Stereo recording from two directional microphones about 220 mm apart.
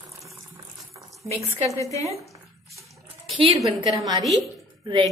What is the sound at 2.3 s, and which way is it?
Drip, 15° right (ahead or behind).